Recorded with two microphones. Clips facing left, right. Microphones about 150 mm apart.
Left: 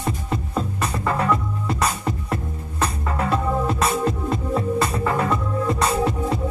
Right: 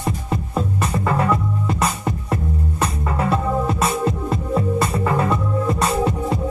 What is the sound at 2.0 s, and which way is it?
Music, 15° right (ahead or behind).